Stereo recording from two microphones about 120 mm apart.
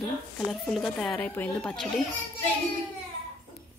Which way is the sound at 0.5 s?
Centre (ahead or behind).